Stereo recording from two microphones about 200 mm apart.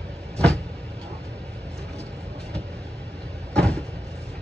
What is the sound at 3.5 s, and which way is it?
Vehicle, 5° left (ahead or behind).